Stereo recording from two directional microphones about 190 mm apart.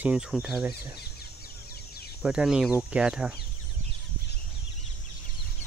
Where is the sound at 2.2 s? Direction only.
5° right (ahead or behind).